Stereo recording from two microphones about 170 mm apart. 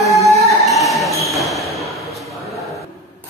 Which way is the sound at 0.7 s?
Centre (ahead or behind).